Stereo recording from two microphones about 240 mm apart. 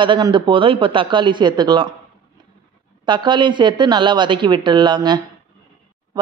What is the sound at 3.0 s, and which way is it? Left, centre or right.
A woman's voice, centre.